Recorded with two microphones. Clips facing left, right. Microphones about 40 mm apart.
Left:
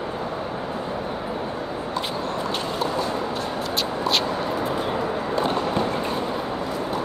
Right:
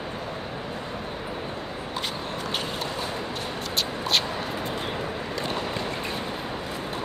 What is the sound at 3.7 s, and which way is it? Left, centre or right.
Vehicle, centre.